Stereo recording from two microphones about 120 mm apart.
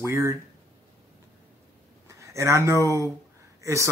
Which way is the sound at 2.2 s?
25° right (ahead or behind).